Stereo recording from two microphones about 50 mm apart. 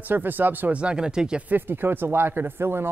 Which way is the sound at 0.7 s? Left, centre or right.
Centre.